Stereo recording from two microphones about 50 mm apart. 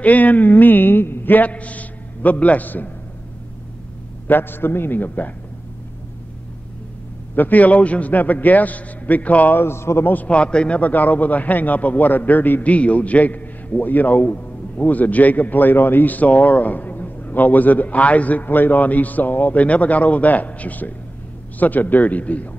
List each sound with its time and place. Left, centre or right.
0.0 s a man's voice: left
4.3 s a man's voice: left
7.3 s a man's voice: left
9.6 s a man's voice: left
10.2 s speech: left
10.8 s a man's voice: left
12.7 s a man's voice: left